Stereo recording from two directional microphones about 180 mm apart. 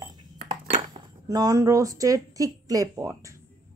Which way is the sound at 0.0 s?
25° right (ahead or behind).